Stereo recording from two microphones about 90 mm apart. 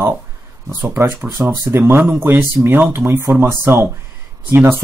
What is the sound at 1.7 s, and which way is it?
Speech, 25° right (ahead or behind).